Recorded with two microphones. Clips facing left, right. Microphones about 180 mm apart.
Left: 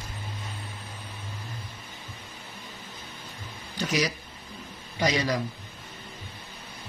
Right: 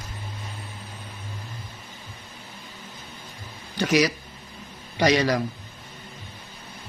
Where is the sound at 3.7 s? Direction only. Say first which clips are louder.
Right 6 dB; 70° right (ahead or behind).